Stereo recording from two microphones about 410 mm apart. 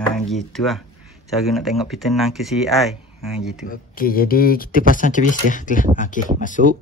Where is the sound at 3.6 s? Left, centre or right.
Centre.